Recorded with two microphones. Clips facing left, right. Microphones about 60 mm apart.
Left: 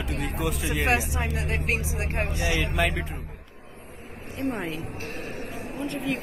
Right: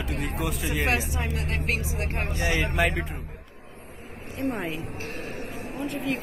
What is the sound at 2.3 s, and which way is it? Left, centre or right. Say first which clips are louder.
Speech: right 2 dB; right.